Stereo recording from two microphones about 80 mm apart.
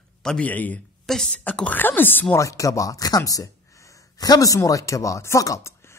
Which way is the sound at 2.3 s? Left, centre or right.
Left.